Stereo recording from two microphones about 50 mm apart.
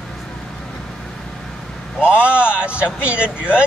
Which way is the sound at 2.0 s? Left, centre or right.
Right.